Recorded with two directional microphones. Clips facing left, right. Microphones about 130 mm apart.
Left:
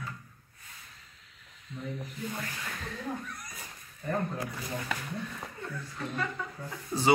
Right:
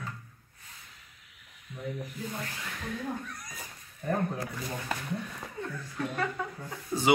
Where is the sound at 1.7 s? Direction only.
10° right (ahead or behind).